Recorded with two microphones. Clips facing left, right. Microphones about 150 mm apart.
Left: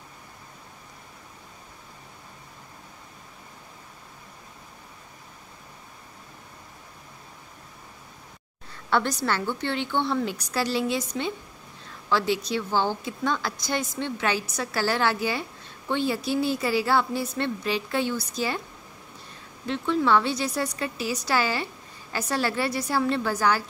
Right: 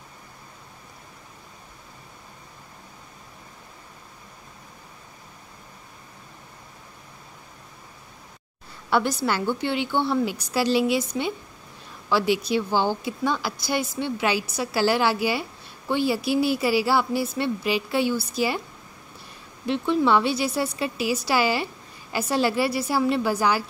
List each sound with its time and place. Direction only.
8.9 s a woman's voice: 10° right (ahead or behind)
19.6 s a woman's voice: 15° right (ahead or behind)